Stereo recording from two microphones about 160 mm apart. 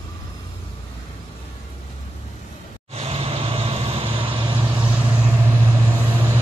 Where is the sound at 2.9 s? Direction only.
40° right (ahead or behind).